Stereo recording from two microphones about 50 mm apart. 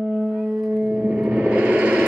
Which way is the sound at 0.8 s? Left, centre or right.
Right.